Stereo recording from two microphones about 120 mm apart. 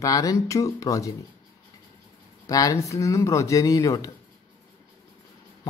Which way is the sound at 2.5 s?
30° left (ahead or behind).